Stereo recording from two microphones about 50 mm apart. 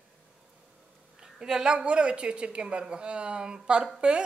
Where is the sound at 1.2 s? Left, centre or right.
Centre.